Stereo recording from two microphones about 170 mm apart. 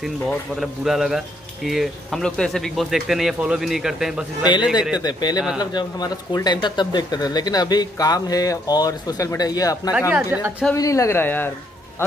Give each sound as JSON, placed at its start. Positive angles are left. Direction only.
{"t": 0.0, "sound": "speech", "side_deg": 0}
{"t": 4.9, "sound": "speech", "side_deg": 25}
{"t": 9.9, "sound": "a woman's voice", "side_deg": -10}
{"t": 10.7, "sound": "speech", "side_deg": 20}